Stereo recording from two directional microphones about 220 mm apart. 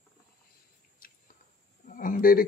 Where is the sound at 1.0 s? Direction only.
40° left (ahead or behind).